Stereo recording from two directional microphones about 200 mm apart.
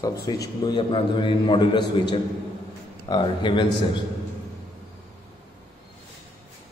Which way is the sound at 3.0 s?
25° left (ahead or behind).